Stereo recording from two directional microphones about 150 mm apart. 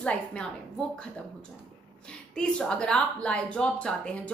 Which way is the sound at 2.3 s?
5° left (ahead or behind).